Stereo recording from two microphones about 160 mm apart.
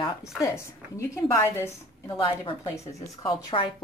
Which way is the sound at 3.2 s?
30° left (ahead or behind).